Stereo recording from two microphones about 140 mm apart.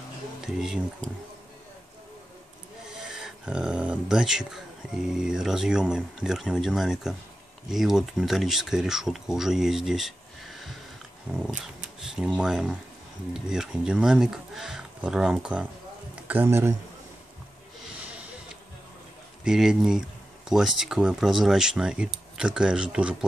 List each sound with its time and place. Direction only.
0.6 s speech: 5° right (ahead or behind)
3.0 s speech: 5° right (ahead or behind)
11.3 s a man's voice: 5° right (ahead or behind)
19.4 s speech: 5° right (ahead or behind)